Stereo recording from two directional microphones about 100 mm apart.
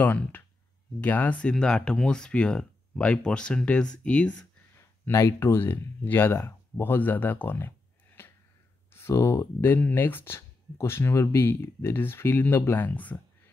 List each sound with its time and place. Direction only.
0.0 s speech: 20° left (ahead or behind)
4.7 s speech: 30° left (ahead or behind)
8.2 s a sound: 25° left (ahead or behind)
8.9 s speech: 25° left (ahead or behind)